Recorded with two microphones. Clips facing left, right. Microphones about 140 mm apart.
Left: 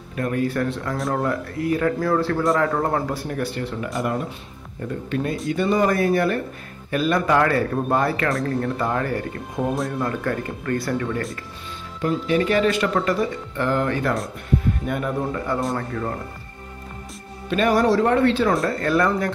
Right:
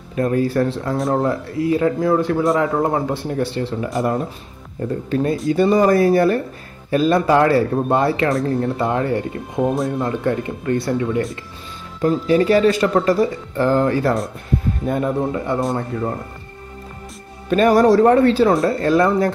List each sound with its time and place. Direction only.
0.1 s speech: 30° right (ahead or behind)
5.1 s speech: 35° right (ahead or behind)
12.0 s speech: 35° right (ahead or behind); by 16.1 s 20° right (ahead or behind)
17.5 s speech: 40° right (ahead or behind)